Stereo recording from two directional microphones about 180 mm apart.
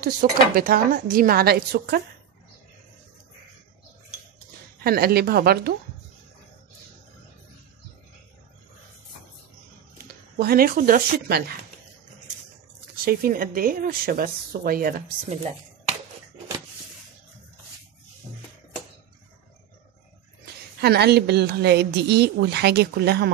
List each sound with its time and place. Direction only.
0.0 s a woman's voice: 55° right (ahead or behind)
4.8 s a woman's voice: 60° right (ahead or behind)
10.3 s a woman's voice: 60° right (ahead or behind)
12.9 s a woman's voice: 55° right (ahead or behind)
20.8 s a woman's voice: 65° right (ahead or behind)